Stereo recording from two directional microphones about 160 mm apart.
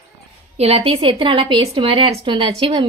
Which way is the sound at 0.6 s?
40° right (ahead or behind).